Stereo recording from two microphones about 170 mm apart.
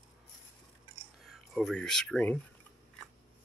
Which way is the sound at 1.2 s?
Centre (ahead or behind).